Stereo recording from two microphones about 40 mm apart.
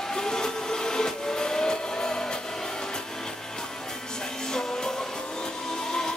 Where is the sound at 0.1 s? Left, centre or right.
Centre.